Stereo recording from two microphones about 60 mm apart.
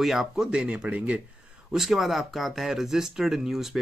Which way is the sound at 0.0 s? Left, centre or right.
Centre.